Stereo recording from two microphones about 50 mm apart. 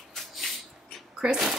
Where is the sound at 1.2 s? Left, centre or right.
Centre.